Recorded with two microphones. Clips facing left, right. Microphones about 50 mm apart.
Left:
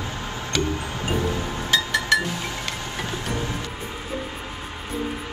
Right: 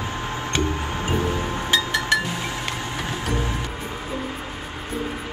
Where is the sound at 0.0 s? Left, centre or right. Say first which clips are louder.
Right 3 dB; right.